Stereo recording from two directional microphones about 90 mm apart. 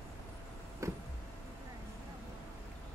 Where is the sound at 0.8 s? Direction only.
35° right (ahead or behind).